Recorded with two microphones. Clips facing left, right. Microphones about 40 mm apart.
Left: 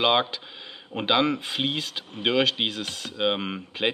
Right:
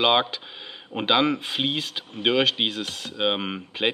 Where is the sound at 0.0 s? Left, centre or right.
Centre.